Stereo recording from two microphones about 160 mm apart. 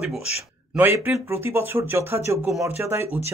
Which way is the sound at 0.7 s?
10° right (ahead or behind).